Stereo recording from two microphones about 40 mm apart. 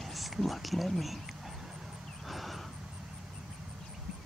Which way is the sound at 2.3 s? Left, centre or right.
Centre.